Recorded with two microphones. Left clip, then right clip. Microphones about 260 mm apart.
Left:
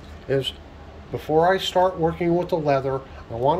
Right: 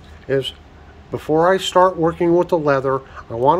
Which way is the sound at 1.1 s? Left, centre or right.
Right.